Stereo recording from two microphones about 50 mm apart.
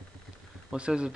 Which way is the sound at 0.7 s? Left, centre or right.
Right.